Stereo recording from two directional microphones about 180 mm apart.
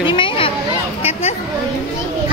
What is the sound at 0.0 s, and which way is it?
Children playing, 25° left (ahead or behind).